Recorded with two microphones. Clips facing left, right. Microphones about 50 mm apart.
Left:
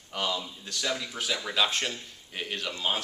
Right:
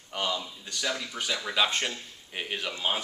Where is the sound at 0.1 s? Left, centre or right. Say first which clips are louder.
Even; centre.